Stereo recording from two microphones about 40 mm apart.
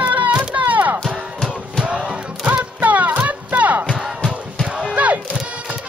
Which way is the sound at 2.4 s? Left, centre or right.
Right.